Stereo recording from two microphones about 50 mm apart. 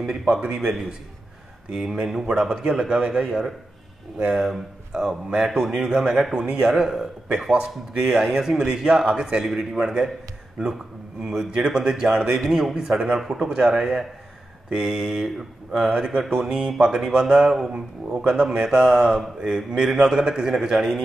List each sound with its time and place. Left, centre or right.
0.0 s speech: centre
0.3 s speech: right
11.2 s speech: centre
15.9 s speech: centre